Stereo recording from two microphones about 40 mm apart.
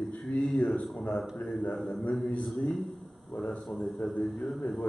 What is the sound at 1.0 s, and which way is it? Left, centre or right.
Speech, left.